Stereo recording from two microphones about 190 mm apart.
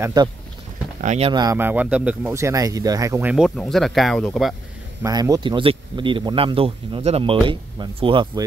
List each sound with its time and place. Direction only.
0.0 s speech: 20° right (ahead or behind)
1.0 s speech: 30° right (ahead or behind)
1.4 s speech: 15° right (ahead or behind)
5.0 s speech: 20° right (ahead or behind)